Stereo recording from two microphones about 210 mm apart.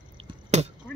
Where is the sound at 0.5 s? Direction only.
35° right (ahead or behind).